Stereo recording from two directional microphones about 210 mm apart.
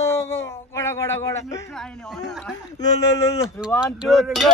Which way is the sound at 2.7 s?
15° left (ahead or behind).